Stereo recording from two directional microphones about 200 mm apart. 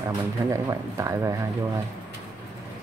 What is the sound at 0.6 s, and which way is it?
Speech, 15° right (ahead or behind).